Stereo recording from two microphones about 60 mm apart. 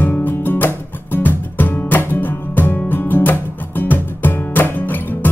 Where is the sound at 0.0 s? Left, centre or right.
Left.